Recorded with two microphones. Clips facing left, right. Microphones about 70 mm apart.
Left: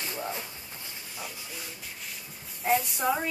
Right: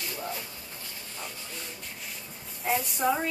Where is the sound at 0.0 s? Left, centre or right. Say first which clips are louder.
Left 1 dB; left.